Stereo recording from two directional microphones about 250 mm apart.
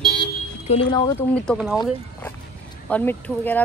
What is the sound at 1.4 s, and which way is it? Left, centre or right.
Speech, centre.